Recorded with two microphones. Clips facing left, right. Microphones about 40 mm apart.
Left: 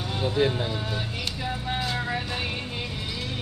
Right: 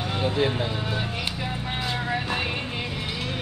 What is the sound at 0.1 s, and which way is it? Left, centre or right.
Vehicle, right.